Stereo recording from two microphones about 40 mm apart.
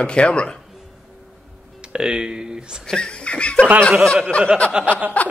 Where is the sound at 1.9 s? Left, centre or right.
Centre.